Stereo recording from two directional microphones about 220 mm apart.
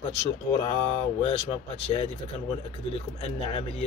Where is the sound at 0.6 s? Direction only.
25° left (ahead or behind).